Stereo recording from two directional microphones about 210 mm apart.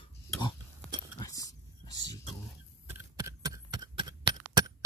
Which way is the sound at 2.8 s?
15° right (ahead or behind).